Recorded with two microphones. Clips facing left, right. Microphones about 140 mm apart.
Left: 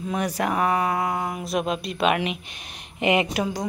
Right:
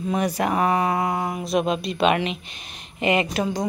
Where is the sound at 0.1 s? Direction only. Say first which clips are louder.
Right 2 dB; centre (ahead or behind).